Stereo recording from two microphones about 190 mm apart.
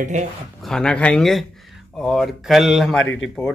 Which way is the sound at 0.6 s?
5° left (ahead or behind).